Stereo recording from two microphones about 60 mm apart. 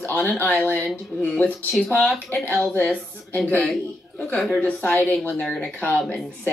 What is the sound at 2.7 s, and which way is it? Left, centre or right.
Speech, left.